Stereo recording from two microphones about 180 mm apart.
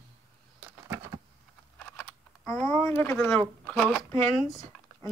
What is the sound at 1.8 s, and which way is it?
Speech, 5° left (ahead or behind).